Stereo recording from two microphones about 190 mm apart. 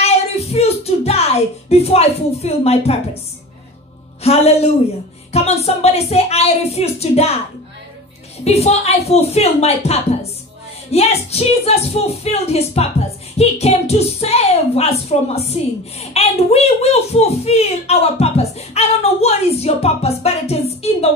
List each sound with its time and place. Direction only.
0.0 s speech: 35° left (ahead or behind)
4.2 s speech: 35° left (ahead or behind)
8.5 s speech: 35° left (ahead or behind)